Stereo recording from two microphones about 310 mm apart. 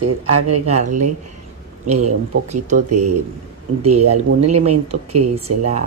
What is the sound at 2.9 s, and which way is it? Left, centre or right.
Speech, right.